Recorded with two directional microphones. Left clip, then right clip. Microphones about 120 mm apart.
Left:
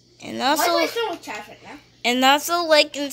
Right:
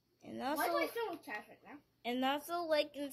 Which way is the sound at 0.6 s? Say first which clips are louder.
Left 12 dB; 5° left (ahead or behind).